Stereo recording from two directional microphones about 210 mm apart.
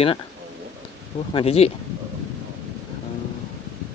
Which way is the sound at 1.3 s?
25° left (ahead or behind).